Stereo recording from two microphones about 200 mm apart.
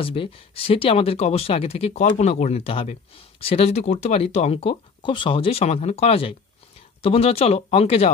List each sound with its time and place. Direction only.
0.0 s speech: 25° left (ahead or behind)